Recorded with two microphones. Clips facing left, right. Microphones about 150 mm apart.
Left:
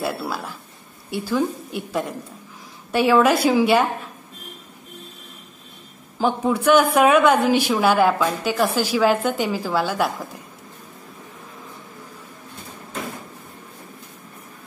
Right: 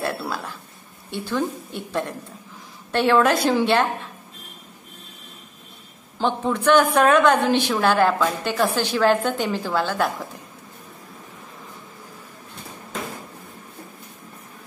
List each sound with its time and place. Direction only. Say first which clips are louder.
0.0 s a woman's voice: left 1 dB; 5° left (ahead or behind)
6.1 s a woman's voice: left 2 dB; 5° left (ahead or behind)